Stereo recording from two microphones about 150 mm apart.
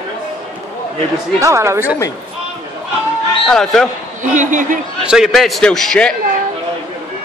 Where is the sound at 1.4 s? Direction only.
20° right (ahead or behind).